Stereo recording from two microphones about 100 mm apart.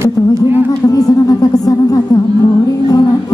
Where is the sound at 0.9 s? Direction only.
35° left (ahead or behind).